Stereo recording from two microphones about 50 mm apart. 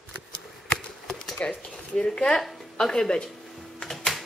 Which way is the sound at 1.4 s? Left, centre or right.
Left.